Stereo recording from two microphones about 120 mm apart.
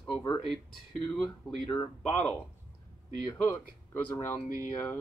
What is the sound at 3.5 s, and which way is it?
Speech, 15° left (ahead or behind).